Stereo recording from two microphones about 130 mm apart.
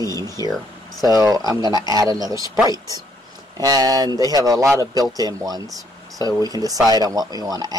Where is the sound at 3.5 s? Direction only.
30° right (ahead or behind).